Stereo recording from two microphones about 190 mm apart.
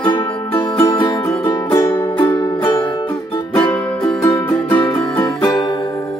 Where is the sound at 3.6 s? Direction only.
10° left (ahead or behind).